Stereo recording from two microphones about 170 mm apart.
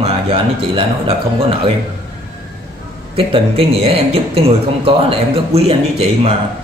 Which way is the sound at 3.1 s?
35° right (ahead or behind).